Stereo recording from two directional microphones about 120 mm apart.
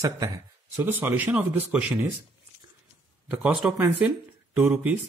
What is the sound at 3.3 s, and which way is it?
Speech, 10° right (ahead or behind).